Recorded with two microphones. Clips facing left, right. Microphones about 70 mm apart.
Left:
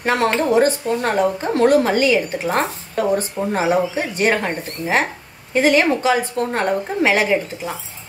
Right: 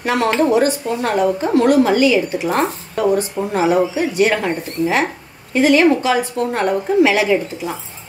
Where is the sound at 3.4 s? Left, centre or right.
Right.